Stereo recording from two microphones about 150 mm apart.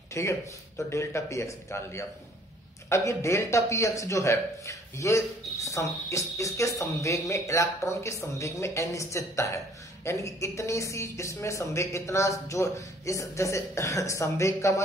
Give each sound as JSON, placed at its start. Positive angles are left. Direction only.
{"t": 0.1, "sound": "a man's voice", "side_deg": 20}